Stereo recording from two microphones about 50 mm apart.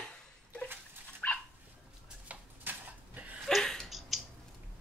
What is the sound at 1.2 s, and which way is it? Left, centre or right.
Dog, left.